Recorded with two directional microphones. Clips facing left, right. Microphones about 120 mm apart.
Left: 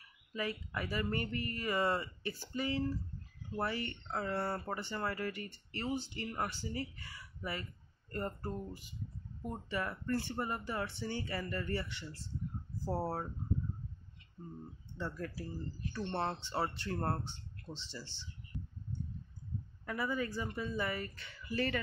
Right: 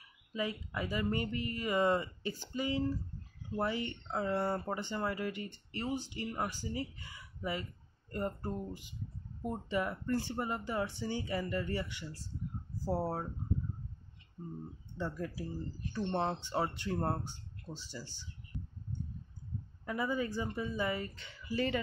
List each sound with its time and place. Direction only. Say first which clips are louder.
0.3 s speech: right 2 dB; 15° right (ahead or behind)
14.4 s speech: right 3 dB; 15° right (ahead or behind)
19.9 s speech: right 2 dB; 20° right (ahead or behind)